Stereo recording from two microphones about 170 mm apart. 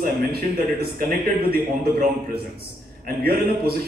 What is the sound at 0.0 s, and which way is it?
A man's voice, 65° right (ahead or behind).